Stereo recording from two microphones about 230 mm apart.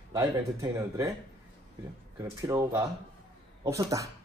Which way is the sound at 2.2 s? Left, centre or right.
Centre.